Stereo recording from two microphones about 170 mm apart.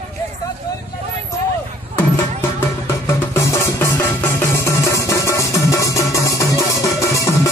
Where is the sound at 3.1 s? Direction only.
15° left (ahead or behind).